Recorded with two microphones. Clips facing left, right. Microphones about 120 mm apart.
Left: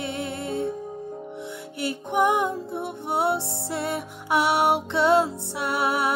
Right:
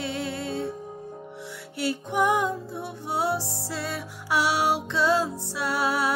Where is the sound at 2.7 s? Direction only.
60° left (ahead or behind).